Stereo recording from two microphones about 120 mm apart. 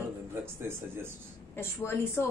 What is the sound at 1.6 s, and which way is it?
Speech, 20° left (ahead or behind).